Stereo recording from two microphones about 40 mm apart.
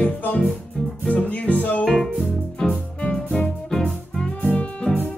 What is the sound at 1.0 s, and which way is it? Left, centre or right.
Music, left.